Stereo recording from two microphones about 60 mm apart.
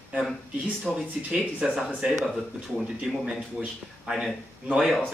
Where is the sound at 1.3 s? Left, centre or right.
Centre.